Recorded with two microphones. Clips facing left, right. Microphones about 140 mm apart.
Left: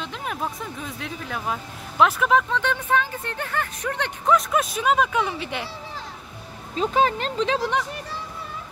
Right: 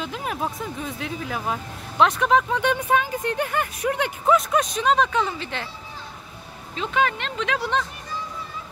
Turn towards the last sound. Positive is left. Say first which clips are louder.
# left 3 dB
turn(degrees=35)  # may be behind; listen again after turning